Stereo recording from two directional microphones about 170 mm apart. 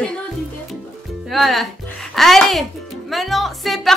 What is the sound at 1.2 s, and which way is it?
Music, centre (ahead or behind).